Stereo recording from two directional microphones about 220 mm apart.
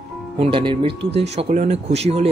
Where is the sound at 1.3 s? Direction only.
35° right (ahead or behind).